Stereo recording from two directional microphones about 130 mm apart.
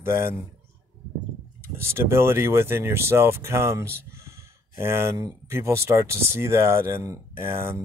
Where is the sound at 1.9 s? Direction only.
20° right (ahead or behind).